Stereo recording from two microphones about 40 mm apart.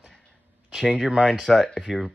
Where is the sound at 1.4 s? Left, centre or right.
Centre.